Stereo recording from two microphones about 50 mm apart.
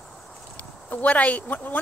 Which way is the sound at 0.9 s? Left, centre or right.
Left.